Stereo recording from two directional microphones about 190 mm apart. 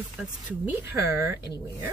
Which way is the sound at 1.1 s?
15° right (ahead or behind).